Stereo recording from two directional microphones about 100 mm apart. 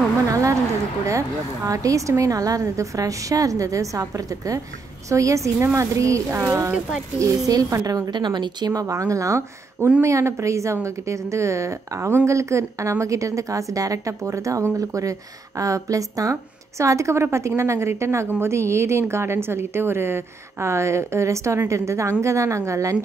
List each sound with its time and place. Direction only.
0.3 s a woman's voice: 35° right (ahead or behind)